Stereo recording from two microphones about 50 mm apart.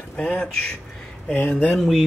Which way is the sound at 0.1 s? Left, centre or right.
Left.